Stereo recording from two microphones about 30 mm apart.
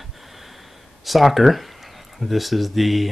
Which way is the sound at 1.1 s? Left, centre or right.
Centre.